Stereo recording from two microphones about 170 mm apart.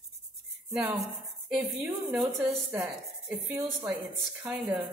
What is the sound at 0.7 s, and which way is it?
A woman's voice, 5° right (ahead or behind).